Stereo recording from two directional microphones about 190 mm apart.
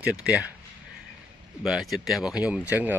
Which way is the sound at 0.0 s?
5° right (ahead or behind).